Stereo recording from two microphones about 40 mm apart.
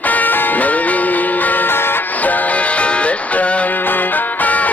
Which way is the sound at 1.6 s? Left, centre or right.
Left.